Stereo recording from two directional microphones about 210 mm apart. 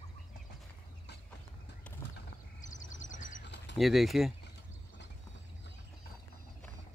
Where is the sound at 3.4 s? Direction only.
55° left (ahead or behind).